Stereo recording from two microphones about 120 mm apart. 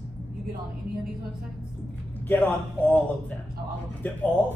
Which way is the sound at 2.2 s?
15° left (ahead or behind).